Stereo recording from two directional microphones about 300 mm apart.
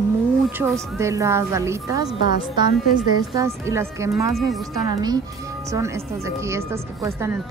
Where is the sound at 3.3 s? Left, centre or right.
Centre.